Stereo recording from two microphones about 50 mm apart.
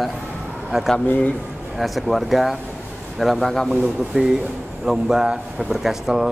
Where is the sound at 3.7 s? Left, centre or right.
Centre.